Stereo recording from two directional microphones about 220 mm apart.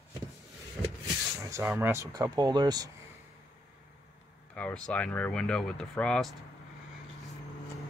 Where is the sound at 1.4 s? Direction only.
10° right (ahead or behind).